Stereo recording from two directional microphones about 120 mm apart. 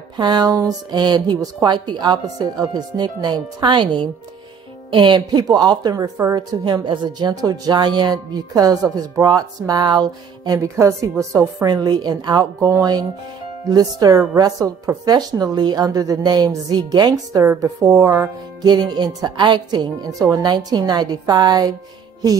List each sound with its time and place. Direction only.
0.2 s a woman's voice: 35° right (ahead or behind)
18.6 s speech: 35° right (ahead or behind)